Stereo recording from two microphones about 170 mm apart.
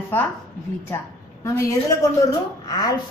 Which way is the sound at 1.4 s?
20° left (ahead or behind).